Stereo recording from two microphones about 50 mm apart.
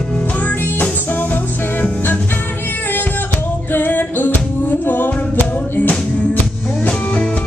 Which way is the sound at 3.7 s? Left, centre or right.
Left.